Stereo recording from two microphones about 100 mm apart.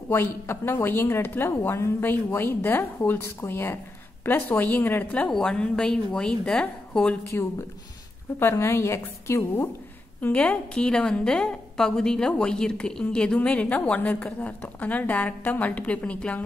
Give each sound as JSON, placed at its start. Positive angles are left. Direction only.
{"t": 0.1, "sound": "a woman's voice", "side_deg": 25}
{"t": 5.3, "sound": "a woman's voice", "side_deg": 10}
{"t": 8.4, "sound": "a woman's voice", "side_deg": 25}
{"t": 10.2, "sound": "a woman's voice", "side_deg": 10}